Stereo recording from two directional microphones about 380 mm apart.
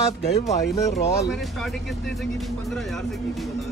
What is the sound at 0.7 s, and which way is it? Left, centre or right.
Speech, centre.